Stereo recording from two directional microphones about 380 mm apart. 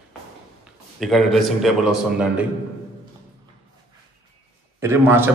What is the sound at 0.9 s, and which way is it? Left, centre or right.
A man's voice, centre.